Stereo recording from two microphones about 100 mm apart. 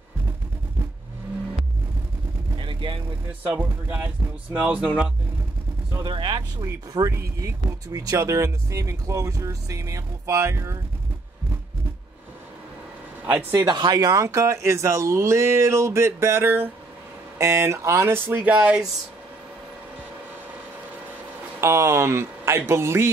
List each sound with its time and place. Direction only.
2.5 s vehicle: 55° right (ahead or behind)
3.4 s speech: 15° right (ahead or behind)
6.0 s speech: 55° right (ahead or behind)
6.6 s speech: 35° right (ahead or behind)
13.3 s speech: 20° right (ahead or behind)
13.7 s speech: 45° right (ahead or behind); by 18.9 s 10° right (ahead or behind)
21.5 s speech: 30° right (ahead or behind)